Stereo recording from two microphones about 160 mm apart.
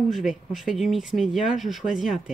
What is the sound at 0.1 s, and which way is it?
Speech, centre (ahead or behind).